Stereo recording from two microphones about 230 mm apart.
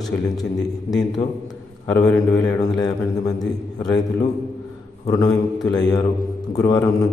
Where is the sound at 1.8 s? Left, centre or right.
Centre.